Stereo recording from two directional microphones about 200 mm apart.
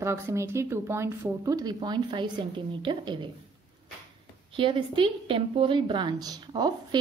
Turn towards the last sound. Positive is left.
turn(degrees=-20)  # may be behind; listen again after turning